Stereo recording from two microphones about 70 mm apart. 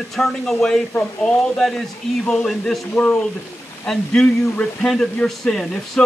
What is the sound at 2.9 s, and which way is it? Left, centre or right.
Speech, centre.